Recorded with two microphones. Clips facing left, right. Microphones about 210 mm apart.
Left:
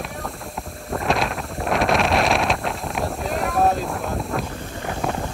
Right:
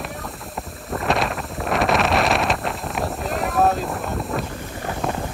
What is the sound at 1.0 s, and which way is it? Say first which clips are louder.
Wind noise: right 1 dB; centre (ahead or behind).